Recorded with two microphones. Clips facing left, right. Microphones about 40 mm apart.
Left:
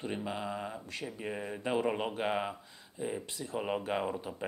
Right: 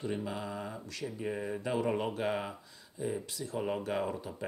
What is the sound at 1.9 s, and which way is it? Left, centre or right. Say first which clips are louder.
Speech: right 1 dB; centre.